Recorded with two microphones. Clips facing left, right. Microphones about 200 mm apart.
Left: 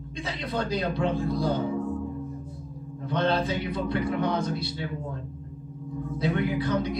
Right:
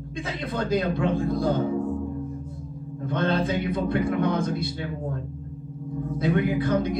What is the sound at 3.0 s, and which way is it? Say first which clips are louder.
Speech: right 1 dB; 50° right (ahead or behind).